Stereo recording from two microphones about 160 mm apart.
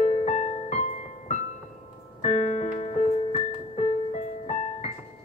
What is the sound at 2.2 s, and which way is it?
Keyboard, 50° left (ahead or behind).